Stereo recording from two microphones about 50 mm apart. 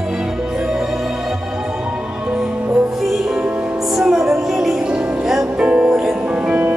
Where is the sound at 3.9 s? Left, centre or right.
Centre.